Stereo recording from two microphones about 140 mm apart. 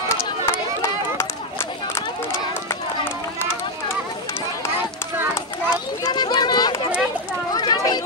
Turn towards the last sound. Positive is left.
turn(degrees=30)  # may be behind; listen again after turning